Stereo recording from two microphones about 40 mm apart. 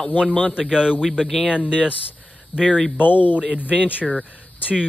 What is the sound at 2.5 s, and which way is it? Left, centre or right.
Speech, left.